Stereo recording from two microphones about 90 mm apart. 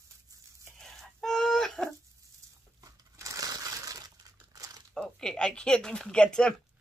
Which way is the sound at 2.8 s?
40° right (ahead or behind).